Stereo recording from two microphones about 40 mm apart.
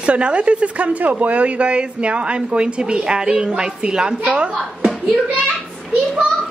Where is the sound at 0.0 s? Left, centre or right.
Right.